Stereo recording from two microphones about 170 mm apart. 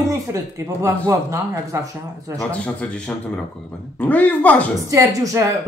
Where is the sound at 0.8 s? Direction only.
15° right (ahead or behind).